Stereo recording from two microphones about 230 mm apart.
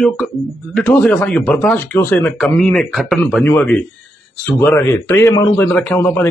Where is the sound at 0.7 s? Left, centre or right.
Centre.